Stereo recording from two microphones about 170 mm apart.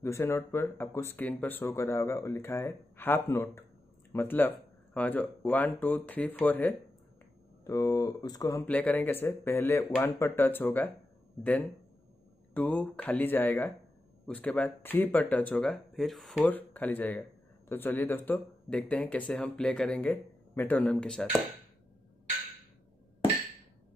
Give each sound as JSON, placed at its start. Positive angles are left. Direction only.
{"t": 0.0, "sound": "speech", "side_deg": 15}
{"t": 8.6, "sound": "speech", "side_deg": 10}
{"t": 12.5, "sound": "speech", "side_deg": 10}